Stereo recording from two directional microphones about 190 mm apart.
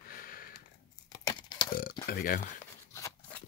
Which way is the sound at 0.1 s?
50° left (ahead or behind).